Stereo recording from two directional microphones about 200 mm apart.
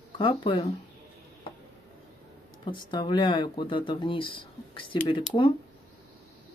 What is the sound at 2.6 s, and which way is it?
Speech, 25° left (ahead or behind).